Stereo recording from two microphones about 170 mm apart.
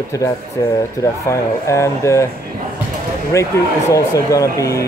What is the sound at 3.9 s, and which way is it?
Speech, 20° left (ahead or behind).